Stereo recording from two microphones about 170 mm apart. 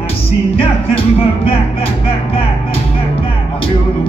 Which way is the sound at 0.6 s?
35° left (ahead or behind).